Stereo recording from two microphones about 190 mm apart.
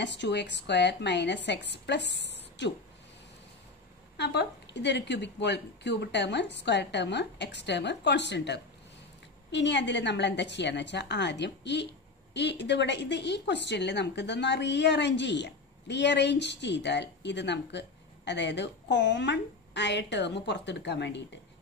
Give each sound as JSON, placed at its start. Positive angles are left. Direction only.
{"t": 0.0, "sound": "speech", "side_deg": 65}
{"t": 4.2, "sound": "speech", "side_deg": 65}